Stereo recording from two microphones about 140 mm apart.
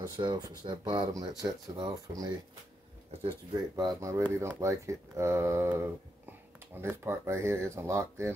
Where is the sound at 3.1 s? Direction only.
45° right (ahead or behind).